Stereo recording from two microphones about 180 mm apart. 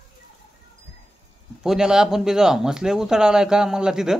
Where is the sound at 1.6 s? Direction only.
5° right (ahead or behind).